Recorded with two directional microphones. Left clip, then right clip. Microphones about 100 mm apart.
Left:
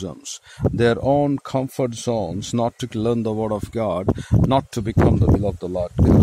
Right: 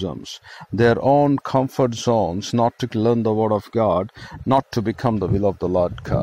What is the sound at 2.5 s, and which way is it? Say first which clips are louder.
Speech: right 3 dB; 25° left (ahead or behind).